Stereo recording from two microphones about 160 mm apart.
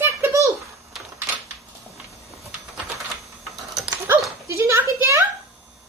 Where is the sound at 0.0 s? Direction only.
15° right (ahead or behind).